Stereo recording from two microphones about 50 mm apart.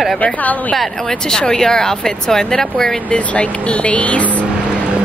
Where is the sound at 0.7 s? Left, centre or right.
Centre.